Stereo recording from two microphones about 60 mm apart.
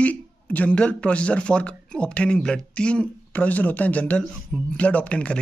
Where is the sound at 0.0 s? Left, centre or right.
Left.